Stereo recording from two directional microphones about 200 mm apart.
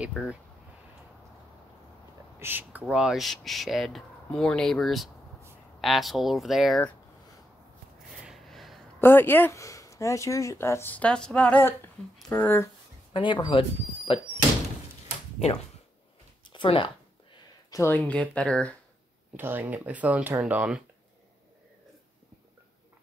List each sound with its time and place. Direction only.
0.0 s speech: 5° right (ahead or behind)
2.3 s speech: 10° right (ahead or behind)
8.2 s a sound: centre (ahead or behind)
9.0 s speech: 10° left (ahead or behind)
13.1 s speech: 25° left (ahead or behind)
16.4 s a sound: 25° left (ahead or behind)
17.6 s speech: 15° left (ahead or behind)
19.3 s speech: 10° right (ahead or behind)